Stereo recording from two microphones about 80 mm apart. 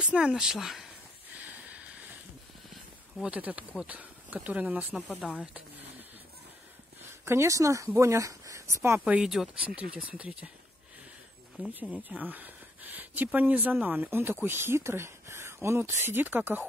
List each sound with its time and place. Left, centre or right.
0.0 s speech: centre
1.4 s a sound: centre
3.2 s speech: centre
7.2 s speech: right
9.0 s speech: centre
11.6 s speech: centre